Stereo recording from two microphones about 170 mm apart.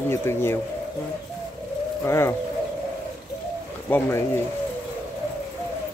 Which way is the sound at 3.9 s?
10° left (ahead or behind).